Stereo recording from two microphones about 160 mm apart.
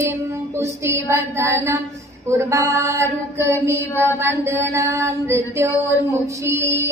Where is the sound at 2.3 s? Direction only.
20° right (ahead or behind).